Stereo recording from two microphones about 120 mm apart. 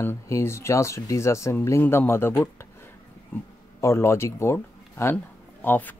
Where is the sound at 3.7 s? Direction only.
20° left (ahead or behind).